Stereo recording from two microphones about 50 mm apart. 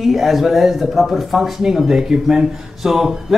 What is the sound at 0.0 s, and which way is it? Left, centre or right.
Speech, centre.